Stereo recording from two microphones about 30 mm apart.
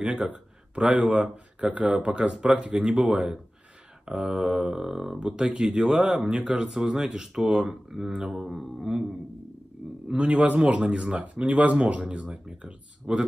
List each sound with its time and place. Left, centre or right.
1.0 s speech: right
1.3 s speech: right
2.0 s speech: right
2.4 s speech: right
5.3 s speech: right; by 9.0 s centre
10.0 s speech: right
11.5 s speech: right
12.3 s speech: right